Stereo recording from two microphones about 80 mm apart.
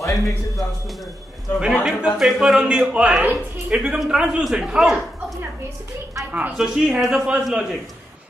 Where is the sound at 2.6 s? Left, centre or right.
Centre.